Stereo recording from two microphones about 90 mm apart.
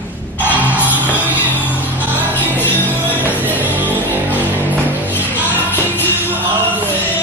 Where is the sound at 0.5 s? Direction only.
15° right (ahead or behind).